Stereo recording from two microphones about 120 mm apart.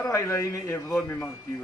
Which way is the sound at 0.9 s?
10° left (ahead or behind).